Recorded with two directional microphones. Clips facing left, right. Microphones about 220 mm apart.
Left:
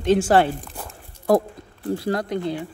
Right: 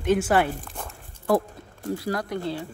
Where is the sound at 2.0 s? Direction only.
25° left (ahead or behind).